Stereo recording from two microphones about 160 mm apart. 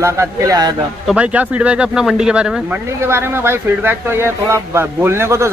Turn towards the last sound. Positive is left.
turn(degrees=-15)  # may be behind; listen again after turning